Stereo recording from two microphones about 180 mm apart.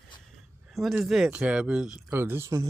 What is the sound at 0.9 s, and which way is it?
Speech, centre (ahead or behind).